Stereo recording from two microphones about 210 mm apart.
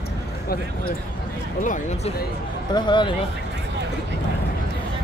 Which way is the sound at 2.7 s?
20° left (ahead or behind).